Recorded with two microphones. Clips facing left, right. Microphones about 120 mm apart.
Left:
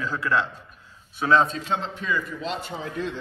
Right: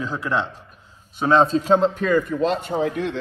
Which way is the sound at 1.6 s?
45° right (ahead or behind).